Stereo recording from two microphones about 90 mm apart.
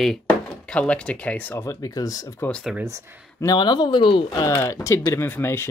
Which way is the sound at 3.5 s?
55° left (ahead or behind).